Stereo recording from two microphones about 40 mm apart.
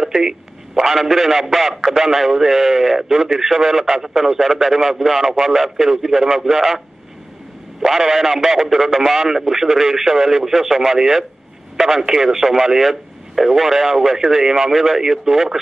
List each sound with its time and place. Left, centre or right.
0.0 s telephone: centre
0.9 s a man's voice: centre
7.8 s a man's voice: centre